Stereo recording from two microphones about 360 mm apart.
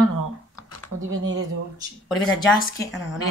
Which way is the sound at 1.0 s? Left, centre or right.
Right.